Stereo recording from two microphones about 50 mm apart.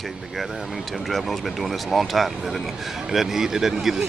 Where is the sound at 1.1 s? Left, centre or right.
Centre.